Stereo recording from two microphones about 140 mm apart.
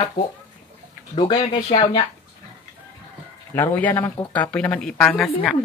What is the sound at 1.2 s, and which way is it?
Speech, 35° left (ahead or behind).